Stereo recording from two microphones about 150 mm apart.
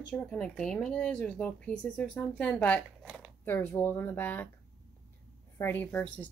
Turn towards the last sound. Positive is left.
turn(degrees=10)  # may be behind; listen again after turning